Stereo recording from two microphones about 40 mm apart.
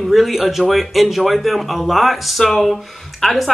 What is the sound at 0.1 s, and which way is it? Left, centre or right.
Speech, centre.